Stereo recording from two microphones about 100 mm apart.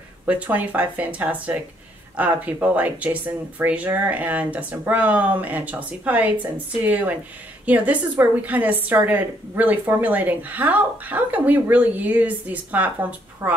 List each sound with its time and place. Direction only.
0.3 s a woman's voice: 15° right (ahead or behind)